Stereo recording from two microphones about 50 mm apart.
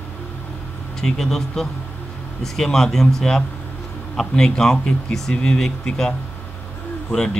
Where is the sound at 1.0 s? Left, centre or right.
Centre.